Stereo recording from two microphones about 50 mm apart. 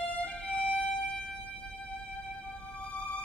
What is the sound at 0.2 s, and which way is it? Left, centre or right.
Music, left.